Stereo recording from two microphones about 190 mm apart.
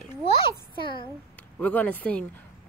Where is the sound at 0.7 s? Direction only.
25° left (ahead or behind).